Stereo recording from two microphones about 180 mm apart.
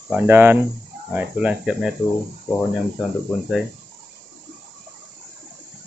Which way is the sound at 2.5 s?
10° left (ahead or behind).